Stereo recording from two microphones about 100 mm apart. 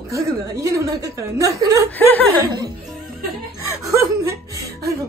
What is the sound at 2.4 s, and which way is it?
Speech, 50° right (ahead or behind).